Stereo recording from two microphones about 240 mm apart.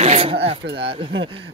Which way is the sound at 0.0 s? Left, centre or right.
Right.